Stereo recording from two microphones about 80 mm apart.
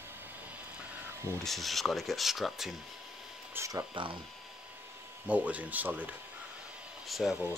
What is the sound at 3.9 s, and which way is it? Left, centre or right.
Speech, right.